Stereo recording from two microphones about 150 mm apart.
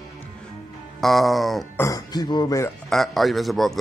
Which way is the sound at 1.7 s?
25° left (ahead or behind).